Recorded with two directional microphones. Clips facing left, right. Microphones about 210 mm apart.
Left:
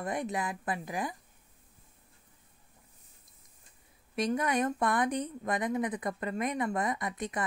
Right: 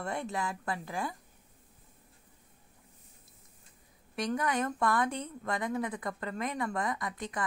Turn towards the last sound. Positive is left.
turn(degrees=20)  # may be behind; listen again after turning